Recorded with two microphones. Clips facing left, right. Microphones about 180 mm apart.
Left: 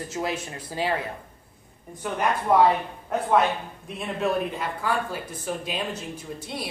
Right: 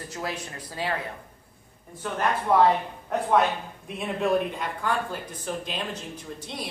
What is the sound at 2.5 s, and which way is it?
Speech, 15° left (ahead or behind).